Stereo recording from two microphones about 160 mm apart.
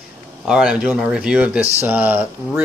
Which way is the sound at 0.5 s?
5° right (ahead or behind).